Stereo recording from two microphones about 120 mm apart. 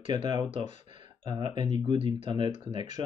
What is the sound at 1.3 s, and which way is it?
Speech, 40° right (ahead or behind).